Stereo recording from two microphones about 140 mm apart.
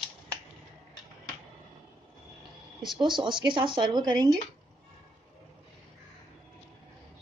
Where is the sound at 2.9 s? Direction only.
35° right (ahead or behind).